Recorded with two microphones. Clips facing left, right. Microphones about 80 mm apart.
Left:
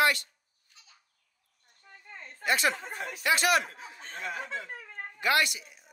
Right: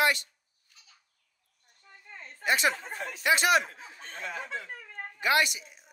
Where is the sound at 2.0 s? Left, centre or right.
Centre.